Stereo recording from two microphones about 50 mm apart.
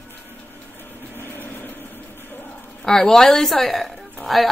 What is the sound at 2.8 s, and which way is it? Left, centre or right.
A woman's voice, centre.